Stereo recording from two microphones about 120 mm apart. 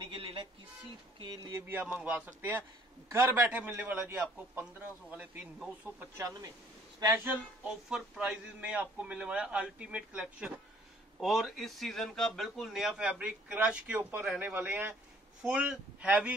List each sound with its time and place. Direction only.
0.0 s a sound: 45° right (ahead or behind)
1.2 s music: 40° right (ahead or behind)
1.5 s a man's voice: 15° right (ahead or behind)
5.9 s speech: 25° right (ahead or behind)
7.2 s a man's voice: 10° right (ahead or behind)